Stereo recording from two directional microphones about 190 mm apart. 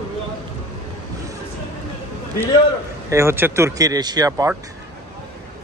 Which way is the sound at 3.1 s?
10° right (ahead or behind).